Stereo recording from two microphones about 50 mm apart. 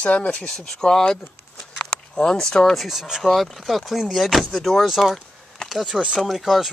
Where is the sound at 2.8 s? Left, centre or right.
Centre.